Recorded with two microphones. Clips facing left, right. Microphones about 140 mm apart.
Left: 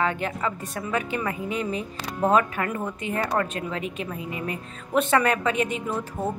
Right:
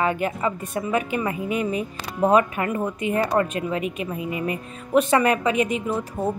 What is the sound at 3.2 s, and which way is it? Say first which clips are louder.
Speech: right 4 dB; 20° right (ahead or behind).